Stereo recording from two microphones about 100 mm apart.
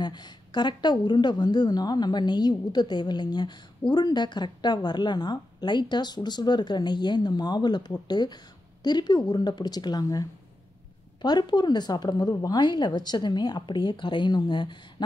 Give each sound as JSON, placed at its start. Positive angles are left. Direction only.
{"t": 0.0, "sound": "speech", "side_deg": 45}
{"t": 11.2, "sound": "speech", "side_deg": 45}